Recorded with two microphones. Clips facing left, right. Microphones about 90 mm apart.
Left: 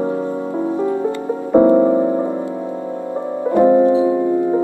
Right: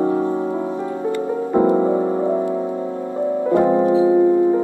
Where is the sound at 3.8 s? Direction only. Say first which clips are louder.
Even; 20° right (ahead or behind).